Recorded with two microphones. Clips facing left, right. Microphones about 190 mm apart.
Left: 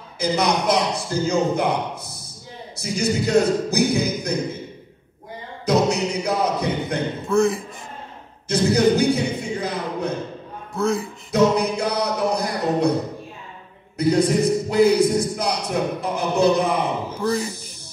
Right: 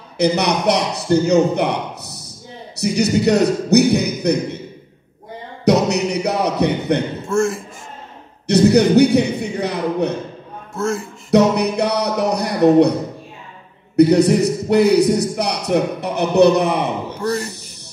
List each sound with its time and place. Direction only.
0.2 s a man's voice: 70° right (ahead or behind)
5.7 s a sound: 70° right (ahead or behind)
7.2 s a man's voice: centre (ahead or behind)
8.5 s a sound: 70° right (ahead or behind)
10.7 s a man's voice: centre (ahead or behind)
11.2 s speech: 70° right (ahead or behind)
13.9 s a man's voice: 70° right (ahead or behind)
17.3 s speech: centre (ahead or behind)